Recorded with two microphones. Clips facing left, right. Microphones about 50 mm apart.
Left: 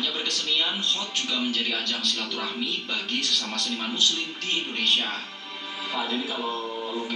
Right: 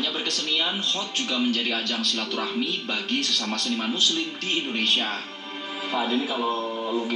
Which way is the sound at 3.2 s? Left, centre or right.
Right.